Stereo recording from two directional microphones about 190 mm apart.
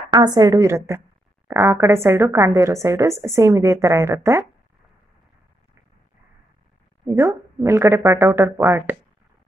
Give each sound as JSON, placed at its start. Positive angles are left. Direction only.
{"t": 0.1, "sound": "a woman's voice", "side_deg": -20}
{"t": 7.1, "sound": "a woman's voice", "side_deg": -15}